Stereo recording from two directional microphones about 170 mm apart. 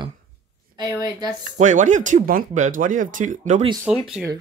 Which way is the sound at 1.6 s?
45° right (ahead or behind).